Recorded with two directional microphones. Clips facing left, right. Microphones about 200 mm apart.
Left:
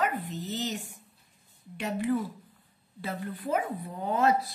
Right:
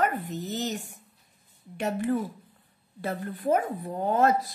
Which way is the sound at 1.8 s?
50° right (ahead or behind).